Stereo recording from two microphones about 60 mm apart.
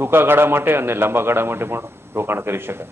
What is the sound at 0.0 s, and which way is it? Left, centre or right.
Speech, right.